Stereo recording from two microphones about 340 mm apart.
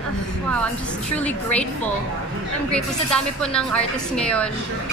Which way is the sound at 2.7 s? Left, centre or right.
Centre.